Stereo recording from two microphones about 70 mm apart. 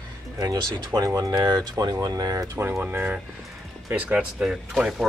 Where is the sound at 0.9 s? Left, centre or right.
Right.